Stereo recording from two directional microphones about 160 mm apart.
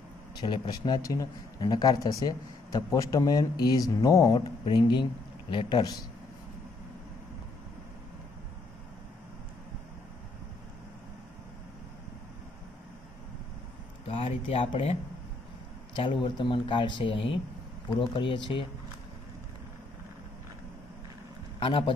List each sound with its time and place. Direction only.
0.4 s speech: 25° left (ahead or behind)
14.0 s speech: 35° left (ahead or behind)
16.0 s speech: 30° left (ahead or behind)
21.5 s a man's voice: 30° left (ahead or behind)